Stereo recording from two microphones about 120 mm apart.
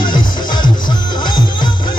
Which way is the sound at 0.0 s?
40° left (ahead or behind).